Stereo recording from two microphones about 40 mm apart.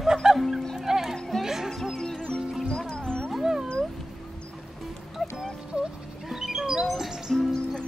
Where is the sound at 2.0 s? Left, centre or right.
Left.